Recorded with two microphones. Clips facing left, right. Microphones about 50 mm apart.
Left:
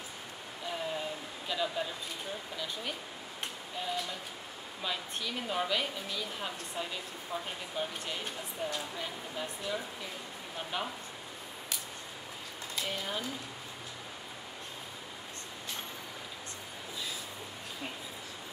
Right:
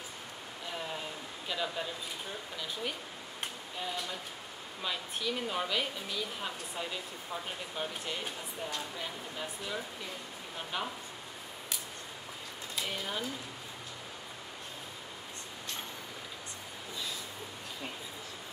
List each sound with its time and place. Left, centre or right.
0.7 s a sound: centre
1.5 s speech: centre
12.7 s speech: centre